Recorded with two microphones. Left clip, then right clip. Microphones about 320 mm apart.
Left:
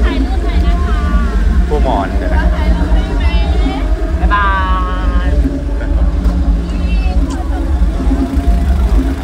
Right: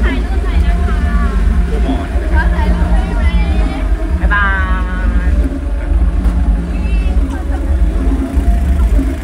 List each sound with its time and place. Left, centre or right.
4.3 s music: centre